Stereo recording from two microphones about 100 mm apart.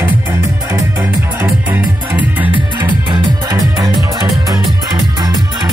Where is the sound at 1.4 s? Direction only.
15° right (ahead or behind).